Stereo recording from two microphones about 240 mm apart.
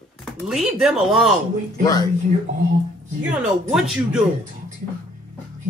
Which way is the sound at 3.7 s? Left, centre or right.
Centre.